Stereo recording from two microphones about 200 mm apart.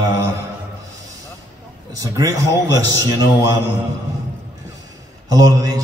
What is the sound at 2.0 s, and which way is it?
A man's voice, 20° right (ahead or behind).